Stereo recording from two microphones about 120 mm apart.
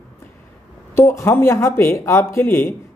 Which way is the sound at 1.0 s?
20° left (ahead or behind).